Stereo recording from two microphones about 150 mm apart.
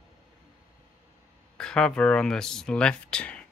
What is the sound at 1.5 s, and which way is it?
Speech, 5° left (ahead or behind).